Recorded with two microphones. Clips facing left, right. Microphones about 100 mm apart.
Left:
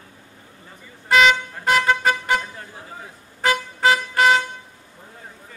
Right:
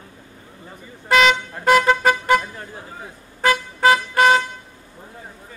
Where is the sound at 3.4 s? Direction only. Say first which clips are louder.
Right 2 dB; 50° right (ahead or behind).